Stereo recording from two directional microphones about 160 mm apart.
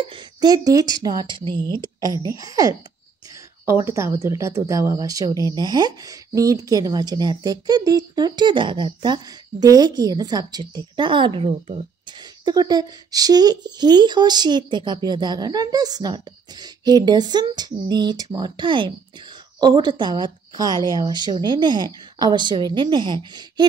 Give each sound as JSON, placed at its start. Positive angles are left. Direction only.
{"t": 0.0, "sound": "speech", "side_deg": -30}
{"t": 12.2, "sound": "speech", "side_deg": -25}